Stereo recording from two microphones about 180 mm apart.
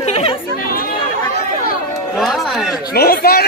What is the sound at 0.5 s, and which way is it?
Speech, 55° left (ahead or behind).